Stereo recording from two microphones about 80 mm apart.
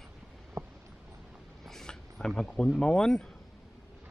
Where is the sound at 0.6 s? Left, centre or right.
Right.